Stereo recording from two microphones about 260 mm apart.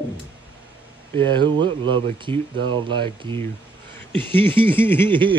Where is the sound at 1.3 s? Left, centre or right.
Centre.